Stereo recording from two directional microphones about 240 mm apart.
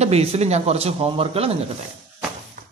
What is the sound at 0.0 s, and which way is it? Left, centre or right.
Speech, right.